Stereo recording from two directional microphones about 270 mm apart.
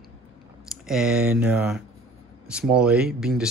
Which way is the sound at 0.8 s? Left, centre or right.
Centre.